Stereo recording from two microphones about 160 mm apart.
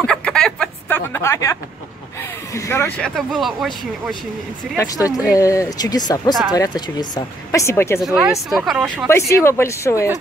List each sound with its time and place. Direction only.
0.0 s a sound: 5° left (ahead or behind)
2.5 s speech: 15° left (ahead or behind)
3.2 s speech: centre (ahead or behind)
4.7 s speech: 20° left (ahead or behind)
8.0 s speech: 5° right (ahead or behind)
9.0 s speech: 15° left (ahead or behind)